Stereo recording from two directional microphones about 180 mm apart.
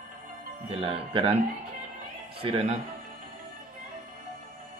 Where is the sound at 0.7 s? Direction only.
30° right (ahead or behind).